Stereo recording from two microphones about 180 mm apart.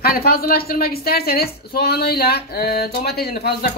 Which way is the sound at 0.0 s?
60° left (ahead or behind).